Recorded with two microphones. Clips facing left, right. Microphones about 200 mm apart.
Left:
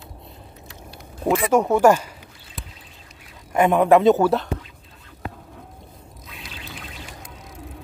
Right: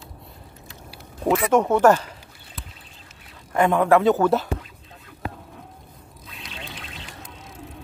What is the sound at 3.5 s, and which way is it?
Speech, 15° left (ahead or behind).